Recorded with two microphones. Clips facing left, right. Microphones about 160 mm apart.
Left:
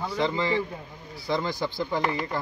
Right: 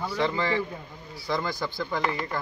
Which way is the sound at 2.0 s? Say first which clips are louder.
Left 1 dB; 5° left (ahead or behind).